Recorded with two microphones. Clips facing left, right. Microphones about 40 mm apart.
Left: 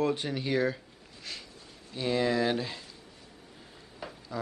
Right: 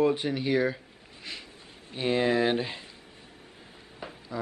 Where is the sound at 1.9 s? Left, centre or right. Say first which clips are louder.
Right 3 dB; right.